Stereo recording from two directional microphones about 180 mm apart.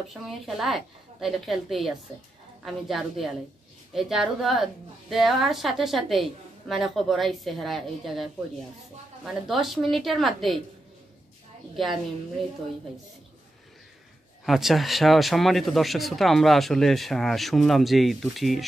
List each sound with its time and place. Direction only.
0.1 s speech: centre (ahead or behind)
11.7 s a woman's voice: centre (ahead or behind)
14.4 s speech: centre (ahead or behind)